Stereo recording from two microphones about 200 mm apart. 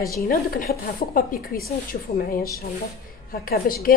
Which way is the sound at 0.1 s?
45° left (ahead or behind).